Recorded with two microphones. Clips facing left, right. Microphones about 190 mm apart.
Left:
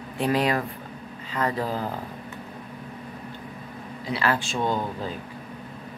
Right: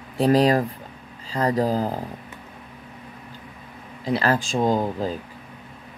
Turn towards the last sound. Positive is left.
turn(degrees=-40)  # may be behind; listen again after turning